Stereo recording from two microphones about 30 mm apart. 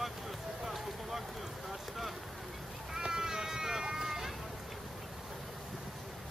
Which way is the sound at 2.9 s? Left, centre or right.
Right.